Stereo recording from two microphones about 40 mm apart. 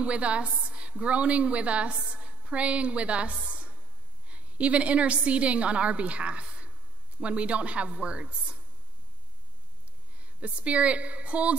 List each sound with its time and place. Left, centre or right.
0.0 s a woman's voice: right
10.2 s a woman's voice: right